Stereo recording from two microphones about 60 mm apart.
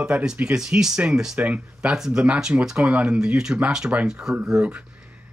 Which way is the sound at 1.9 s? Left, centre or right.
Centre.